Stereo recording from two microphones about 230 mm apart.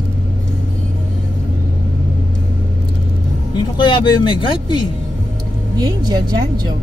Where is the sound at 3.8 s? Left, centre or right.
Centre.